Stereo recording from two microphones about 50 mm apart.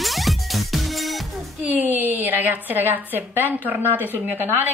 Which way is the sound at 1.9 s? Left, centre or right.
Right.